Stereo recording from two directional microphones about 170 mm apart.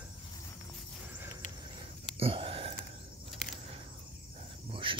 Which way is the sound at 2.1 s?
35° right (ahead or behind).